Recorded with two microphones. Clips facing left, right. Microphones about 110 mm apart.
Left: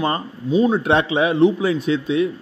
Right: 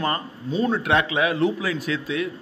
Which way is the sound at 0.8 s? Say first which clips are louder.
Left 4 dB; 25° left (ahead or behind).